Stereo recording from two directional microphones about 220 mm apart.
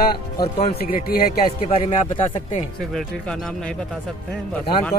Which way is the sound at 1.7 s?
30° left (ahead or behind).